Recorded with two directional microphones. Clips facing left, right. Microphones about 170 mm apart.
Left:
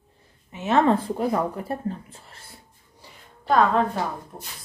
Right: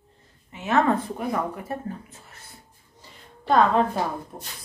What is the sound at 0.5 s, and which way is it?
Speech, 25° left (ahead or behind).